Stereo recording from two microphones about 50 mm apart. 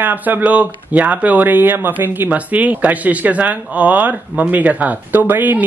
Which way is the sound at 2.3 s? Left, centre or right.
Right.